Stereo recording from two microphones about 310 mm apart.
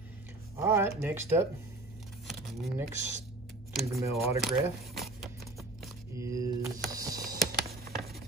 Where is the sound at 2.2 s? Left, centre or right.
Centre.